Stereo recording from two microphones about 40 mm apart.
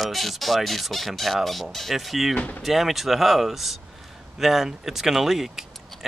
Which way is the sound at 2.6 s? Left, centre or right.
Centre.